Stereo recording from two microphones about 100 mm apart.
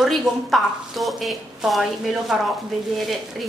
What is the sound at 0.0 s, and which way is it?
A woman's voice, centre (ahead or behind).